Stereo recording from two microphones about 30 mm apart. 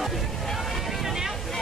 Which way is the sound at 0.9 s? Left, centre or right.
Centre.